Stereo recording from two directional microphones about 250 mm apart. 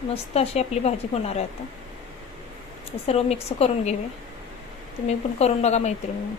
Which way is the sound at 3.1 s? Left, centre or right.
Left.